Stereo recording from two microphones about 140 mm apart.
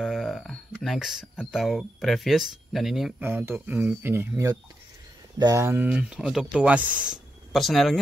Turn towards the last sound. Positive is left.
turn(degrees=0)  # may be behind; listen again after turning